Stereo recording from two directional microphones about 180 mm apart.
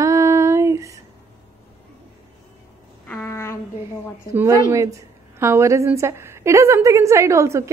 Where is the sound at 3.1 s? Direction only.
15° left (ahead or behind).